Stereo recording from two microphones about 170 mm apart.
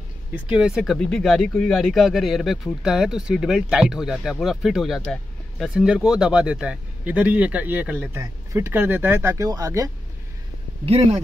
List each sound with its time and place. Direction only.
0.3 s speech: 5° right (ahead or behind)
10.9 s speech: 35° right (ahead or behind)